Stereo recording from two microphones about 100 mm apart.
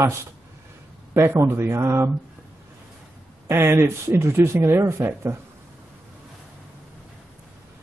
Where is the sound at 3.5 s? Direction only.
25° right (ahead or behind).